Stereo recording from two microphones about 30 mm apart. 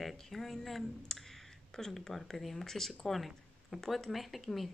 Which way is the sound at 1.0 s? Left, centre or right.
Centre.